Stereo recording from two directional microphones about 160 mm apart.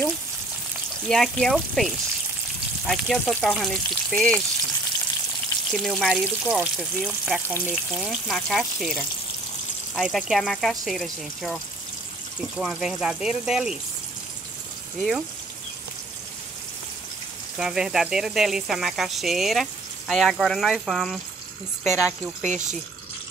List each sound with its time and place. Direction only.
1.0 s speech: 5° left (ahead or behind)
5.7 s speech: 5° left (ahead or behind)
15.0 s speech: centre (ahead or behind)
17.6 s speech: 5° right (ahead or behind)
22.4 s speech: 50° right (ahead or behind)